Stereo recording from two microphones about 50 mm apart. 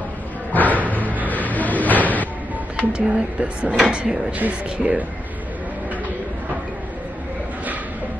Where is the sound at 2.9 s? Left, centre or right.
Right.